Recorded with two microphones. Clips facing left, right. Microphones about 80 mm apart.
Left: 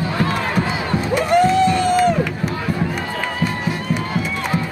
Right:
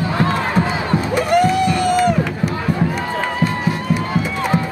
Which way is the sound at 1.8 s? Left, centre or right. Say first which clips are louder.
Even; centre.